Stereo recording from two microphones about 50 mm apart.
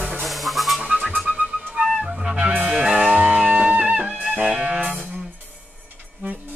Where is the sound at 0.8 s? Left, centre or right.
Centre.